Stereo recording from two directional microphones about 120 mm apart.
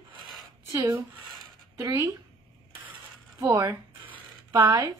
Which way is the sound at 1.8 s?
30° right (ahead or behind).